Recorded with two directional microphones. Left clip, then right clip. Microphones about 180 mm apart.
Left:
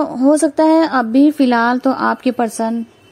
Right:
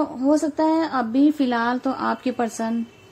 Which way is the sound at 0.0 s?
40° left (ahead or behind).